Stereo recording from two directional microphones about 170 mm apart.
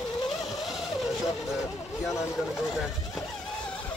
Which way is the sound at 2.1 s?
Centre (ahead or behind).